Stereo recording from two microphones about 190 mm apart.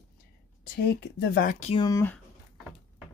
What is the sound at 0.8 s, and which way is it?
Speech, 55° left (ahead or behind).